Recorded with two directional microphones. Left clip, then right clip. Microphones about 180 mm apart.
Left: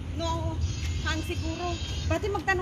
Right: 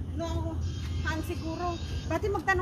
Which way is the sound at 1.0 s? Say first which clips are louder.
Left 2 dB; 40° right (ahead or behind).